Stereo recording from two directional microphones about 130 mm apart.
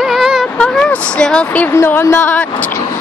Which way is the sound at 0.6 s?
5° left (ahead or behind).